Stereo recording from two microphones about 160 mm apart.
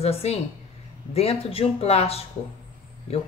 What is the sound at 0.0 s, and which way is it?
Speech, 40° left (ahead or behind).